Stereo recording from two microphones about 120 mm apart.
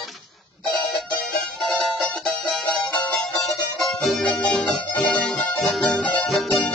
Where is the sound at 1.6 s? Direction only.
Centre (ahead or behind).